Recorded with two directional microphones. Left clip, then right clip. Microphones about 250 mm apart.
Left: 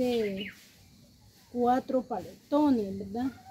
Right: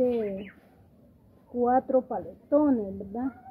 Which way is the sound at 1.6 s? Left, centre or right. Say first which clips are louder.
Right 4 dB; centre.